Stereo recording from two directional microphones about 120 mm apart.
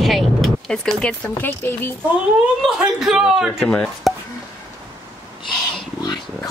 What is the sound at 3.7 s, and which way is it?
Speech, 5° left (ahead or behind).